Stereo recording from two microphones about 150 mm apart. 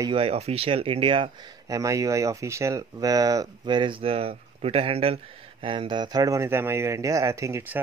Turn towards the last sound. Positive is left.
turn(degrees=-15)  # may be behind; listen again after turning